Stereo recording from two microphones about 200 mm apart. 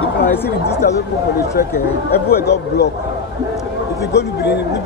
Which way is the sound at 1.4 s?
50° left (ahead or behind).